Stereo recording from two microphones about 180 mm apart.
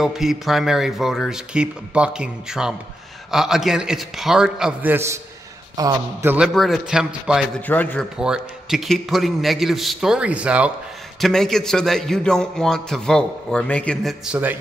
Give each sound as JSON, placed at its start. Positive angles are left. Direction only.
{"t": 0.0, "sound": "a man's voice", "side_deg": 0}
{"t": 6.3, "sound": "a man's voice", "side_deg": 0}
{"t": 7.6, "sound": "a man's voice", "side_deg": 10}
{"t": 8.2, "sound": "a man's voice", "side_deg": -5}